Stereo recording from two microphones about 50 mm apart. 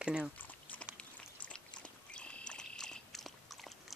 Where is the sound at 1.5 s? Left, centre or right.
Centre.